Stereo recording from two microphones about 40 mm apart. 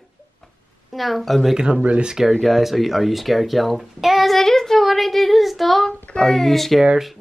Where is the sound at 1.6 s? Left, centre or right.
Right.